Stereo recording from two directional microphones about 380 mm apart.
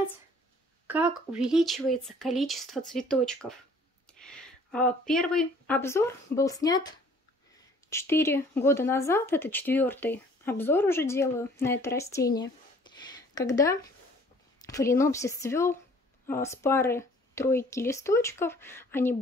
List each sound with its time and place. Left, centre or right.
0.8 s speech: centre